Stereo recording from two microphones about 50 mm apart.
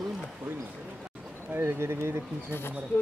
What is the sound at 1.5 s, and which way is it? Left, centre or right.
Speech, right.